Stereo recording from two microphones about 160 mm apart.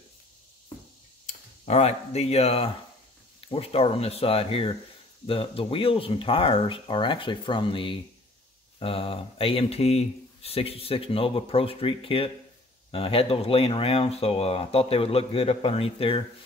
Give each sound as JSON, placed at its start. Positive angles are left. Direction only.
{"t": 1.7, "sound": "speech", "side_deg": 40}